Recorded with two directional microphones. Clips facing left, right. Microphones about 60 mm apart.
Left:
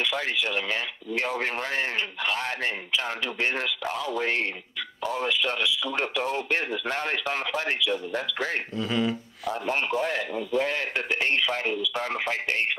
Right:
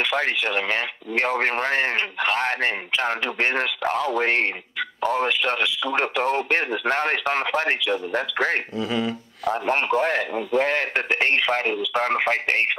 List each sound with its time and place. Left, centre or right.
0.0 s speech: right
8.7 s speech: centre
9.5 s speech: right